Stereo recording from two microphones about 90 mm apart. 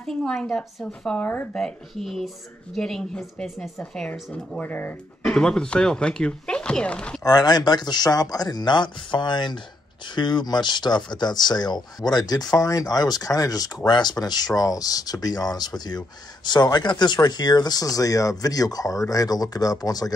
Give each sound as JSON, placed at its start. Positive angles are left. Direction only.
{"t": 0.0, "sound": "speech", "side_deg": 5}
{"t": 1.5, "sound": "speech", "side_deg": 5}
{"t": 4.6, "sound": "speech", "side_deg": 20}
{"t": 7.2, "sound": "speech", "side_deg": 50}